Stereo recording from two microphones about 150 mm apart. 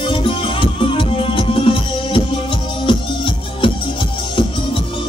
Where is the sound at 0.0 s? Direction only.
35° left (ahead or behind).